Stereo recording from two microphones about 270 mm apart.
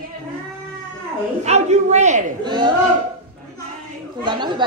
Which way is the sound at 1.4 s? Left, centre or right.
Right.